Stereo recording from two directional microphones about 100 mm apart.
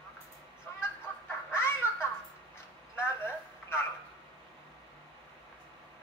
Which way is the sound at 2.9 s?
25° left (ahead or behind).